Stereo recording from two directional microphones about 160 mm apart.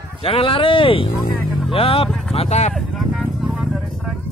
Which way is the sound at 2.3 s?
40° left (ahead or behind).